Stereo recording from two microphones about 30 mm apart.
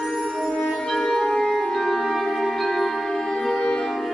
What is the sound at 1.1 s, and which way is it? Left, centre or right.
Music, centre.